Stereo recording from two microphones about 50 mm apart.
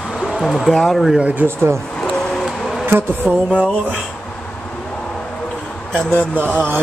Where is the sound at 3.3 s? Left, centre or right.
Right.